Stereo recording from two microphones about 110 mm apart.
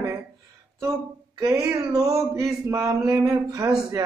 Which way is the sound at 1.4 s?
35° right (ahead or behind).